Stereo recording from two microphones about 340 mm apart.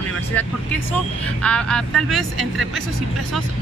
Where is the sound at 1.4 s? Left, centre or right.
Centre.